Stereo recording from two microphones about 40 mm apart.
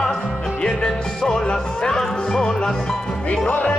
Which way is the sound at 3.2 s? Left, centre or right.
Left.